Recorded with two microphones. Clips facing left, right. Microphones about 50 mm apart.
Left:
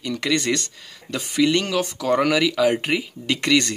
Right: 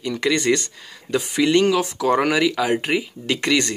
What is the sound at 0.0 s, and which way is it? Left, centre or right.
Speech, centre.